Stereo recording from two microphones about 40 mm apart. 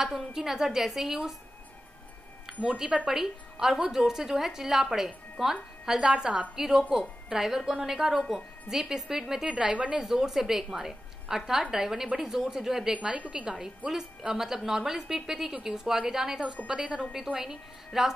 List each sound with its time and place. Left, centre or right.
0.0 s a woman's voice: centre
2.6 s a woman's voice: centre